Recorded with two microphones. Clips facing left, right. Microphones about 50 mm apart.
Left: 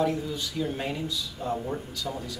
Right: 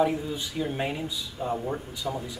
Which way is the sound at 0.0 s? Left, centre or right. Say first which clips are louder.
Right 2 dB; centre.